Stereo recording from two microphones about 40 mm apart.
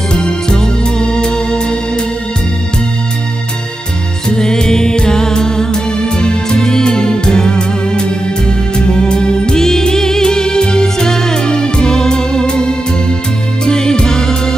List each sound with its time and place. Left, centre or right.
0.1 s music: centre
4.3 s music: centre